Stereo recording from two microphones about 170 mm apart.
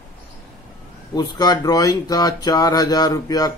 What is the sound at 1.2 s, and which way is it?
Speech, 20° left (ahead or behind).